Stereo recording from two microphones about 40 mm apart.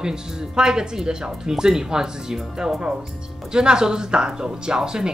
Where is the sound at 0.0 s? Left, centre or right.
Centre.